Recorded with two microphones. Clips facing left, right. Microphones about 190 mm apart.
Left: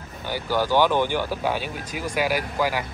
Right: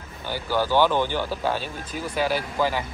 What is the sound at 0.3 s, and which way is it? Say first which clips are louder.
Speech: left 1 dB; 15° left (ahead or behind).